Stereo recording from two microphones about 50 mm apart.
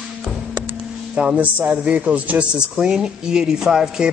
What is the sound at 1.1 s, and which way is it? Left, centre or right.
Speech, right.